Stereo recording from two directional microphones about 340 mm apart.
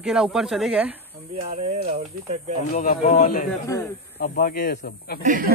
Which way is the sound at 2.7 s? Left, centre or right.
Left.